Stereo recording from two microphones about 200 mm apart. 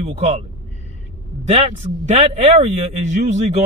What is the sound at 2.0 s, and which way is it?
Speech, 35° right (ahead or behind).